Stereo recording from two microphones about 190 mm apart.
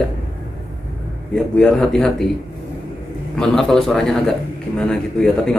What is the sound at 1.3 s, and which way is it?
Speech, centre (ahead or behind).